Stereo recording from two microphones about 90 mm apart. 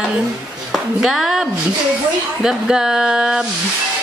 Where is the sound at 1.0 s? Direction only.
5° right (ahead or behind).